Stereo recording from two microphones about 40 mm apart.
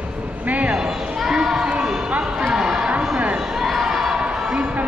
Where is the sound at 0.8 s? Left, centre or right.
Centre.